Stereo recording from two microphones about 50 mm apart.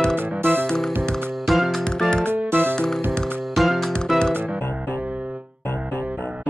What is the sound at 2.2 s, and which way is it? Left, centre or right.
Music, right.